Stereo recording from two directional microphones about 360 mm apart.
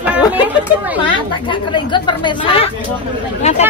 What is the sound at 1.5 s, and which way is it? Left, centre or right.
A woman's voice, centre.